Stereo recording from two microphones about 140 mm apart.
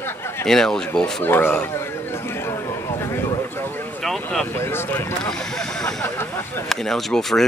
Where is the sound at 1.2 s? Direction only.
15° left (ahead or behind).